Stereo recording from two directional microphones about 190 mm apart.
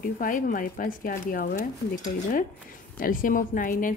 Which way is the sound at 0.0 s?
45° left (ahead or behind).